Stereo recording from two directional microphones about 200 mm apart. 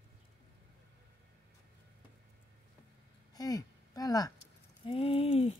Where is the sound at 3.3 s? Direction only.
20° left (ahead or behind).